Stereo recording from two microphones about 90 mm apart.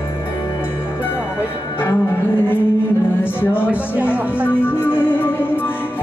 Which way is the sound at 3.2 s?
20° left (ahead or behind).